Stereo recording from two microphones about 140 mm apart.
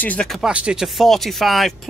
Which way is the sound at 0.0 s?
5° left (ahead or behind).